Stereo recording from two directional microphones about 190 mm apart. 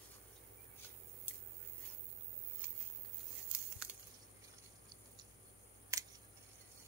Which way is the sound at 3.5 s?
5° right (ahead or behind).